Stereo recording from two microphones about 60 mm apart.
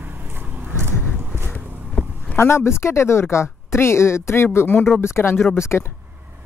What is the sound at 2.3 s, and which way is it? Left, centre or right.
A woman's voice, left.